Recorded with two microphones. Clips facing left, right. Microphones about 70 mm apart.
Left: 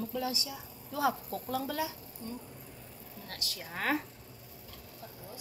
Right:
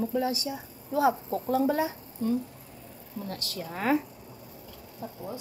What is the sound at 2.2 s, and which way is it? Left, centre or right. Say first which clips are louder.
Speech: right 15 dB; right.